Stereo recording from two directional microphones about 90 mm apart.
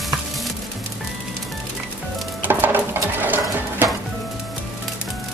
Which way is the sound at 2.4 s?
20° right (ahead or behind).